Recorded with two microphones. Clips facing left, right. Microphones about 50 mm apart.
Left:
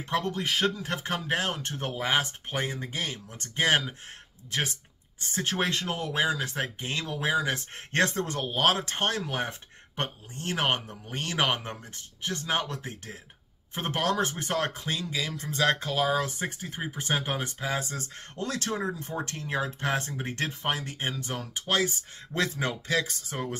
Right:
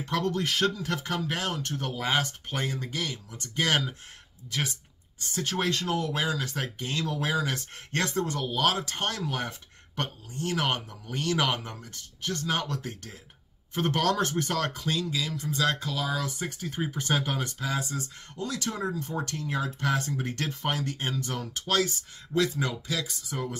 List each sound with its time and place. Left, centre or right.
0.0 s speech: left
0.3 s speech: centre
4.5 s speech: left
16.5 s speech: centre
17.7 s speech: left
18.8 s speech: left
22.3 s speech: left